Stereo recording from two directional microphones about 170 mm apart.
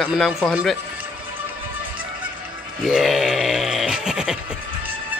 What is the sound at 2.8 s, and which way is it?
Goat, centre (ahead or behind).